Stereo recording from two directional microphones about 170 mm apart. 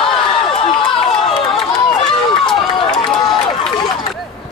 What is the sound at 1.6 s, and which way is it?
Run, centre (ahead or behind).